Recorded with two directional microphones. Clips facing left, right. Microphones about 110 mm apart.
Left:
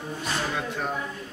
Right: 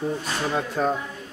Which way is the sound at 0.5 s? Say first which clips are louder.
Right 6 dB; 40° right (ahead or behind).